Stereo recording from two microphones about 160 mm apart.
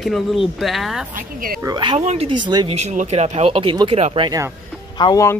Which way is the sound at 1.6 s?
25° right (ahead or behind).